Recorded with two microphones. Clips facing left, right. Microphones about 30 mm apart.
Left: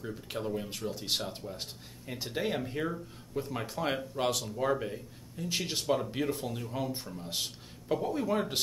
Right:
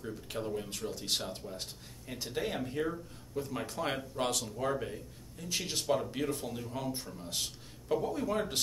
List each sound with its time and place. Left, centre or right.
0.0 s speech: centre